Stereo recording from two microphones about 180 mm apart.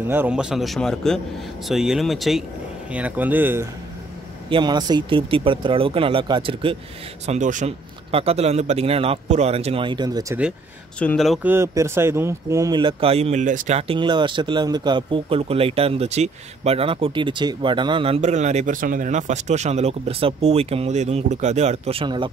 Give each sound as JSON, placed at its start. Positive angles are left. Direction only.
{"t": 0.0, "sound": "a man's voice", "side_deg": -10}
{"t": 4.5, "sound": "speech", "side_deg": -25}
{"t": 7.2, "sound": "speech", "side_deg": -45}
{"t": 11.0, "sound": "a man's voice", "side_deg": 5}
{"t": 11.4, "sound": "speech", "side_deg": -15}